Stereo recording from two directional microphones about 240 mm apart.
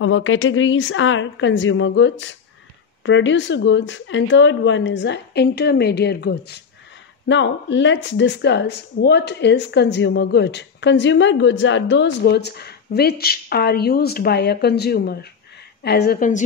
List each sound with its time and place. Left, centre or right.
0.0 s a woman's voice: left